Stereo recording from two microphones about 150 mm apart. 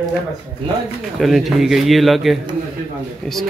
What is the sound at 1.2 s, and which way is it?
Speech, centre (ahead or behind).